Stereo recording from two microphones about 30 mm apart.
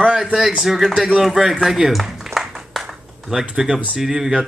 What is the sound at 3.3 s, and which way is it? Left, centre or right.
Speech, centre.